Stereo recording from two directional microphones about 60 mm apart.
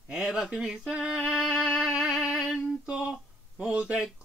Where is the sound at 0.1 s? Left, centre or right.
Centre.